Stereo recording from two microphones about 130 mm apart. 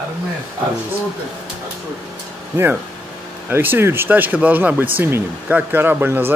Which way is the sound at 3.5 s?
15° right (ahead or behind).